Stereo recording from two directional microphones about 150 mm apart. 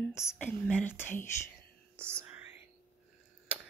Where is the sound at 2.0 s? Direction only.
15° right (ahead or behind).